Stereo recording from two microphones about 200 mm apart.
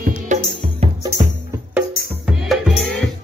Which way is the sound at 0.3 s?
35° right (ahead or behind).